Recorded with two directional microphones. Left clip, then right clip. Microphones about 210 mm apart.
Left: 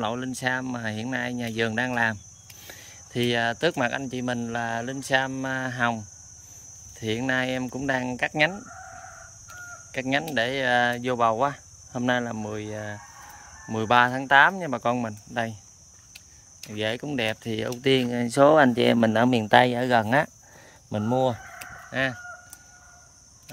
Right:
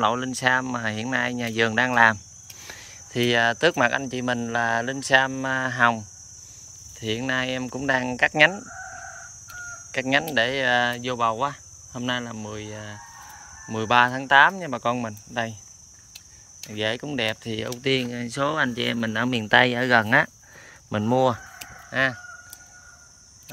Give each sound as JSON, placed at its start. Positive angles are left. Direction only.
{"t": 0.0, "sound": "speech", "side_deg": 5}
{"t": 9.9, "sound": "speech", "side_deg": 5}
{"t": 16.7, "sound": "speech", "side_deg": 10}